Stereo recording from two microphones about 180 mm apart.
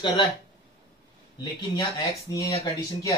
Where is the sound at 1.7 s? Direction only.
20° left (ahead or behind).